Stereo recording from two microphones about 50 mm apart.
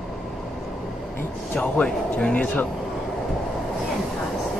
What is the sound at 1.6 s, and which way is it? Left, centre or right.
Speech, centre.